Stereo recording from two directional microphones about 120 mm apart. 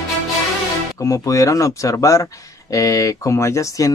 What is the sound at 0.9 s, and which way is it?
Speech, 30° left (ahead or behind).